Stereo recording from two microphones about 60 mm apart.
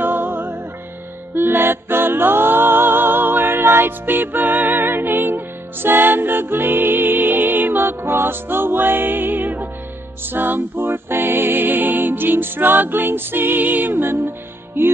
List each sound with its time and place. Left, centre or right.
0.0 s music: right